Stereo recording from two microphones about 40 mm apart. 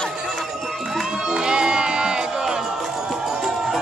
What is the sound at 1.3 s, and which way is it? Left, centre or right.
Music, right.